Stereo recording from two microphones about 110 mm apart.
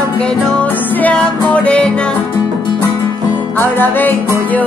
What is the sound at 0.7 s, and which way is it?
Music, 15° left (ahead or behind).